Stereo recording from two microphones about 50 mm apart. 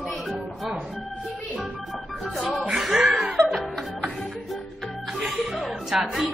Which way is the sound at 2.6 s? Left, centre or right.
Centre.